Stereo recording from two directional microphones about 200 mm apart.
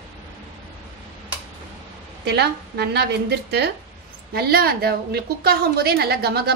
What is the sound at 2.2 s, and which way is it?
A woman's voice, 55° right (ahead or behind).